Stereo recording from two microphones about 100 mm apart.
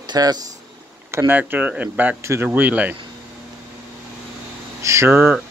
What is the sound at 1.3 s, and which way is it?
Speech, 20° right (ahead or behind).